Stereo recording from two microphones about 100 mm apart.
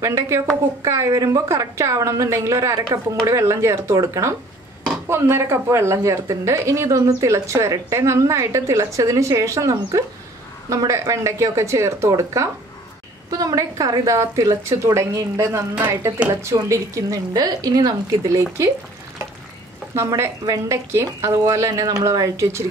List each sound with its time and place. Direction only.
0.0 s a woman's voice: 30° right (ahead or behind)
20.0 s a woman's voice: 30° right (ahead or behind)